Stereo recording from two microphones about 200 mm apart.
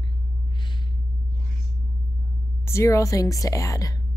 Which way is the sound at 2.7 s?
15° left (ahead or behind).